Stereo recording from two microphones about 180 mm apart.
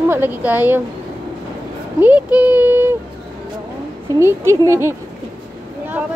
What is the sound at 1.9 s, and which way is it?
A woman's voice, 10° right (ahead or behind).